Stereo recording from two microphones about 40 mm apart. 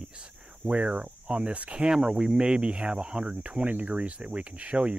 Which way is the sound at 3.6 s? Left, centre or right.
Right.